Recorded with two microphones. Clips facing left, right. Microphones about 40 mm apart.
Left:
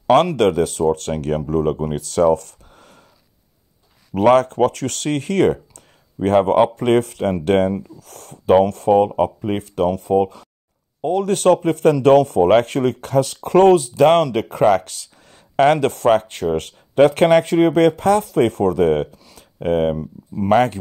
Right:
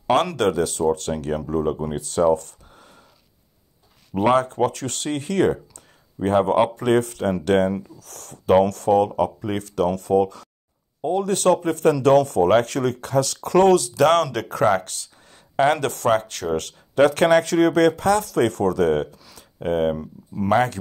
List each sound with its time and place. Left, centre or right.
0.0 s speech: left
2.0 s speech: left
4.2 s speech: left
11.1 s speech: left
14.7 s speech: left
19.3 s a sound: left
20.4 s speech: left